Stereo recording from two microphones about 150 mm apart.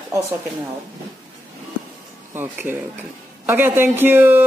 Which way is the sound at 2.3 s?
15° right (ahead or behind).